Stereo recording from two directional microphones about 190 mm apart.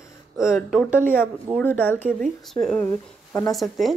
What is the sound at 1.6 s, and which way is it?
A woman's voice, 10° left (ahead or behind).